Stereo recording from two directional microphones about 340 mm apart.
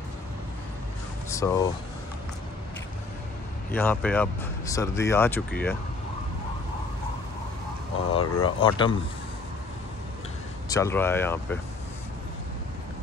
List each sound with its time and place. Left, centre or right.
1.3 s speech: centre
3.7 s speech: centre
8.2 s speech: left
8.5 s speech: centre
10.7 s speech: centre